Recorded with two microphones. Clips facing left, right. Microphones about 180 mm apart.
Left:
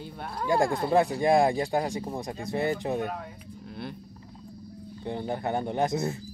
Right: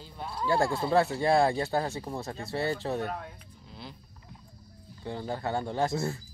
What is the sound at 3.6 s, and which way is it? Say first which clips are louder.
Vehicle: left 7 dB; 60° left (ahead or behind).